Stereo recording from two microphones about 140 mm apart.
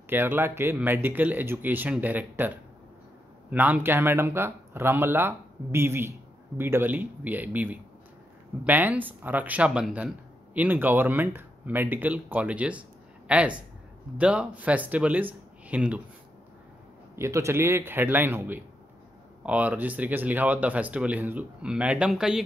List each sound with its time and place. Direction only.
0.1 s speech: 15° right (ahead or behind)
17.1 s speech: 20° right (ahead or behind); by 22.4 s 5° right (ahead or behind)